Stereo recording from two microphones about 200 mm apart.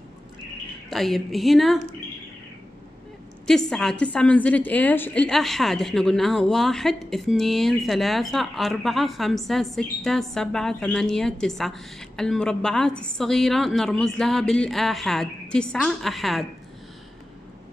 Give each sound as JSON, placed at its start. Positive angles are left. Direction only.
{"t": 0.8, "sound": "a woman's voice", "side_deg": 0}
{"t": 3.4, "sound": "a woman's voice", "side_deg": 0}